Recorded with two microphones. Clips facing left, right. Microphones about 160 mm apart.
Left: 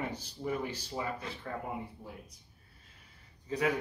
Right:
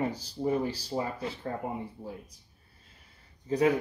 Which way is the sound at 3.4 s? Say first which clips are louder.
Right 6 dB; 30° right (ahead or behind).